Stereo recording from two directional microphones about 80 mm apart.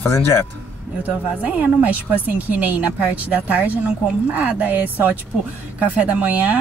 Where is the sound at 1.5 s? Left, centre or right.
Centre.